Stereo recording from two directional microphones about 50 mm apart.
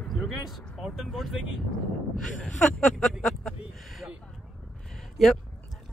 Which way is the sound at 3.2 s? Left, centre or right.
Centre.